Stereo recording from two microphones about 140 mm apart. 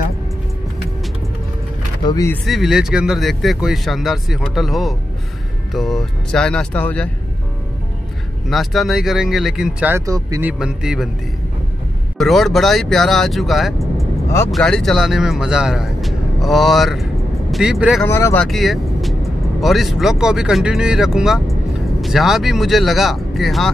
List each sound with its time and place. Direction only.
2.0 s speech: 25° left (ahead or behind)
2.4 s speech: centre (ahead or behind)
8.5 s speech: centre (ahead or behind)
10.0 s speech: 25° right (ahead or behind)
10.4 s speech: 5° right (ahead or behind)
12.2 s speech: centre (ahead or behind)
18.0 s speech: 15° left (ahead or behind)
18.4 s speech: centre (ahead or behind)